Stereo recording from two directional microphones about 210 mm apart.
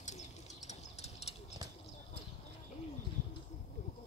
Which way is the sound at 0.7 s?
30° left (ahead or behind).